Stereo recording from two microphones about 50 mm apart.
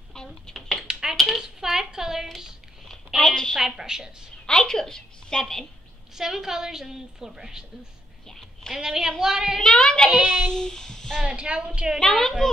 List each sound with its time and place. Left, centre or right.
0.5 s a sound: centre
3.2 s a woman's voice: centre
3.5 s a woman's voice: centre
4.5 s a woman's voice: centre
6.1 s a woman's voice: centre
8.3 s a sound: centre
8.7 s a woman's voice: centre
9.6 s a woman's voice: centre
10.0 s a woman's voice: centre
10.5 s a child's voice: centre
11.2 s a woman's voice: centre
12.0 s a woman's voice: centre